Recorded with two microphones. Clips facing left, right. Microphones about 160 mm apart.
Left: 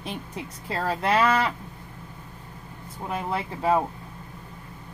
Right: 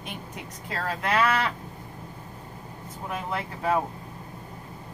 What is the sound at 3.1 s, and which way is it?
Speech, 25° left (ahead or behind).